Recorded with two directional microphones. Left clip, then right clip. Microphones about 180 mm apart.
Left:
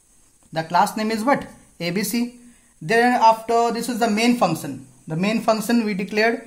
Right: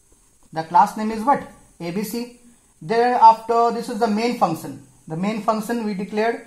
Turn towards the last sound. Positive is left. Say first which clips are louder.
# left 2 dB
turn(degrees=50)  # may be behind; listen again after turning